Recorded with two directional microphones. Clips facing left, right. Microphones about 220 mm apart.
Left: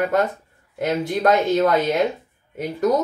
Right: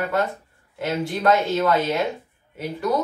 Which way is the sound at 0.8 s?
40° left (ahead or behind).